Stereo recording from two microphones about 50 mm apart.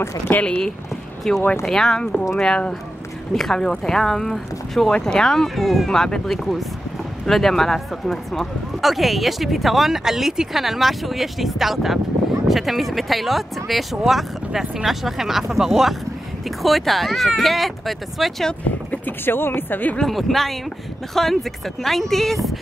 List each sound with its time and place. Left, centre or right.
0.4 s speech: centre
18.9 s speech: left
20.0 s speech: centre